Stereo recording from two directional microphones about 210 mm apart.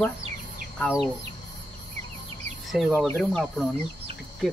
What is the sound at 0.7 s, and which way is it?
Speech, 5° left (ahead or behind).